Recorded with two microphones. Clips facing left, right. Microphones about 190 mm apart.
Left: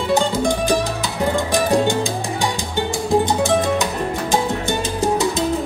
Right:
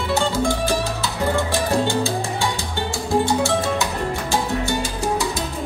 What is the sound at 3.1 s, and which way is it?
Music, 20° left (ahead or behind).